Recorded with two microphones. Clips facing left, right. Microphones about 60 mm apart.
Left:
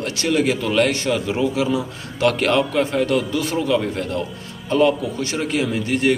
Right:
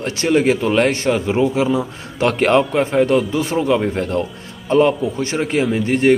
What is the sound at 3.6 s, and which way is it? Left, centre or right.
Speech, centre.